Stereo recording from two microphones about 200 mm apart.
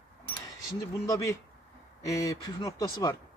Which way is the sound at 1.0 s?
15° left (ahead or behind).